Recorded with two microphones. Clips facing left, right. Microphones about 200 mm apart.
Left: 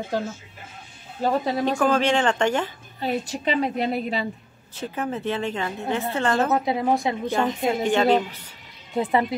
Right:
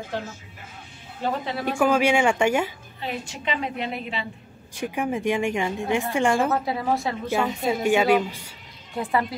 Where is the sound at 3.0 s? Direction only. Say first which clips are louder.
Left 6 dB; 40° left (ahead or behind).